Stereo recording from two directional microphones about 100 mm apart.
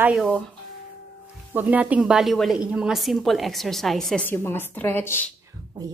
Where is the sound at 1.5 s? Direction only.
15° right (ahead or behind); by 4.2 s centre (ahead or behind).